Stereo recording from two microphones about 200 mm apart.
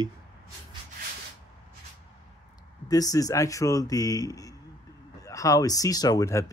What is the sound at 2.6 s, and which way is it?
Speech, 20° left (ahead or behind).